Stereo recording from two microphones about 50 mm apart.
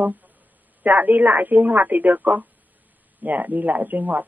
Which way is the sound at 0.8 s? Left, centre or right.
Right.